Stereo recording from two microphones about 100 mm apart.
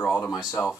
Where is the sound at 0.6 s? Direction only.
20° left (ahead or behind).